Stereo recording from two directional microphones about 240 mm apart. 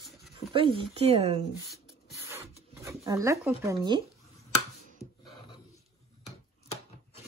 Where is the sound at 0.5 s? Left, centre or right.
Right.